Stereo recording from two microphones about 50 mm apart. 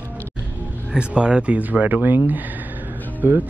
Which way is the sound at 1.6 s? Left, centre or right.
Right.